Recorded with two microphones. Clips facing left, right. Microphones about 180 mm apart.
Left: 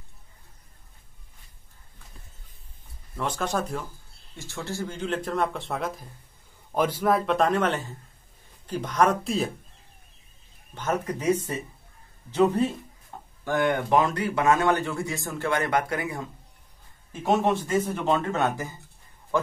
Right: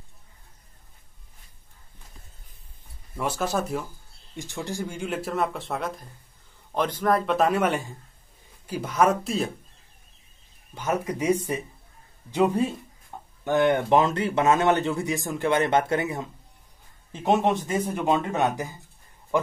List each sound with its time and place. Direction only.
3.2 s a man's voice: 5° right (ahead or behind)
10.7 s speech: 10° right (ahead or behind)
13.4 s speech: 20° right (ahead or behind)
19.3 s a sound: 15° right (ahead or behind)